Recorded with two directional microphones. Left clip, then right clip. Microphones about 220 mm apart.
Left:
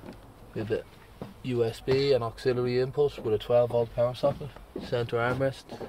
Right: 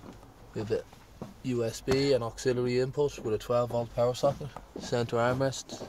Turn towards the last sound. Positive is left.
turn(degrees=-10)  # may be behind; listen again after turning